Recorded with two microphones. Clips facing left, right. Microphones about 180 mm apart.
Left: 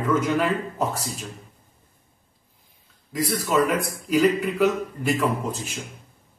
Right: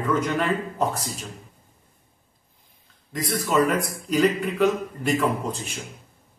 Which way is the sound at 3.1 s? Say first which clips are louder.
Left 1 dB; 5° left (ahead or behind).